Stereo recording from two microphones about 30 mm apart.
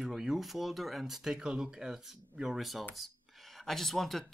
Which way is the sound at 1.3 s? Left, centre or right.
Right.